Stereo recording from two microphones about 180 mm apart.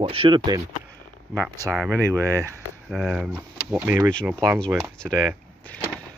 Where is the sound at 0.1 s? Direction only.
30° right (ahead or behind).